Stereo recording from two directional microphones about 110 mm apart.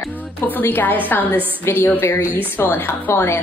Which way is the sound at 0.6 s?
20° left (ahead or behind).